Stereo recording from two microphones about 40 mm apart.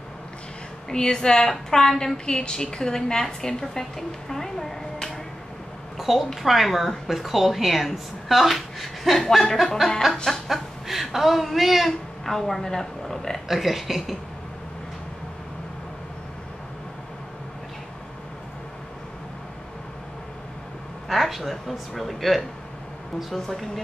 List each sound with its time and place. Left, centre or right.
0.8 s a woman's voice: centre
4.3 s a sound: centre
5.9 s a woman's voice: centre
10.5 s a sound: centre
11.4 s a woman's voice: centre
12.3 s a woman's voice: centre
13.5 s a woman's voice: centre
21.1 s a woman's voice: centre